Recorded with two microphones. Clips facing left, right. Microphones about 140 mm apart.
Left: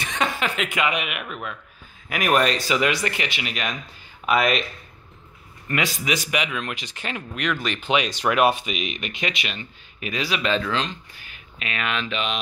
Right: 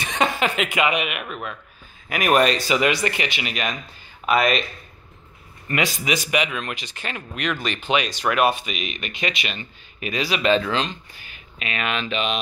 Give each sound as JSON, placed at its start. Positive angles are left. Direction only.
{"t": 0.0, "sound": "chuckle", "side_deg": -20}
{"t": 0.7, "sound": "speech", "side_deg": -10}
{"t": 5.7, "sound": "speech", "side_deg": -5}
{"t": 8.1, "sound": "speech", "side_deg": 20}